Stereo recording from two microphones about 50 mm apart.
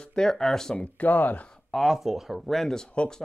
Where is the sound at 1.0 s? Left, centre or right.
Left.